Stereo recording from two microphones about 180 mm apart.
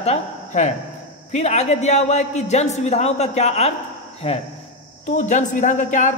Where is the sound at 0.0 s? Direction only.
40° left (ahead or behind).